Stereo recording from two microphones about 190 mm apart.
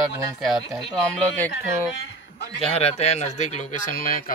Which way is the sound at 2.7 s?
35° left (ahead or behind).